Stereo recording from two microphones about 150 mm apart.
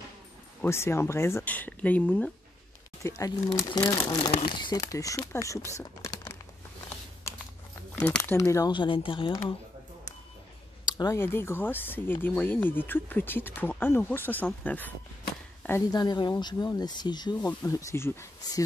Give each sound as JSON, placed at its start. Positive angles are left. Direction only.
{"t": 0.6, "sound": "speech", "side_deg": 15}
{"t": 3.0, "sound": "speech", "side_deg": 20}
{"t": 7.9, "sound": "a sound", "side_deg": 10}
{"t": 8.2, "sound": "speech", "side_deg": 20}
{"t": 8.7, "sound": "speech", "side_deg": 35}
{"t": 10.9, "sound": "a sound", "side_deg": 30}
{"t": 11.1, "sound": "speech", "side_deg": 15}
{"t": 15.9, "sound": "speech", "side_deg": 30}